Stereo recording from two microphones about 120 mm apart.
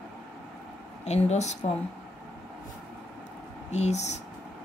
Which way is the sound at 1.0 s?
70° left (ahead or behind).